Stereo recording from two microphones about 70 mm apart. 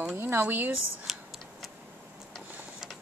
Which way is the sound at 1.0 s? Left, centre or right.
Centre.